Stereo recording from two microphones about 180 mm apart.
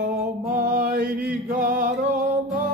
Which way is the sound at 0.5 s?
50° right (ahead or behind).